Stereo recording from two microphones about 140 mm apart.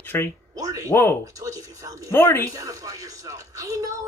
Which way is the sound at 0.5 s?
25° right (ahead or behind).